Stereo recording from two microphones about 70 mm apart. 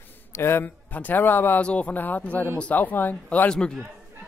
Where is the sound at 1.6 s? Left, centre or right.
Centre.